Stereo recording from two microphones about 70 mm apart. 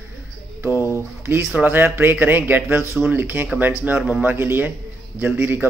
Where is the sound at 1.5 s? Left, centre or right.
Right.